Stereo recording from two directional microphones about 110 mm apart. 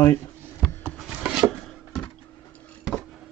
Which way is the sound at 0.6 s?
5° left (ahead or behind).